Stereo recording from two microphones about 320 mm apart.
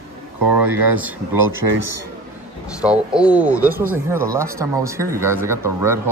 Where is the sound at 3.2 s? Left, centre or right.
Centre.